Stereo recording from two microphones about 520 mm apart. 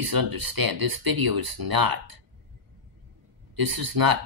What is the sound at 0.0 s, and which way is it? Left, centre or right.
Speech, right.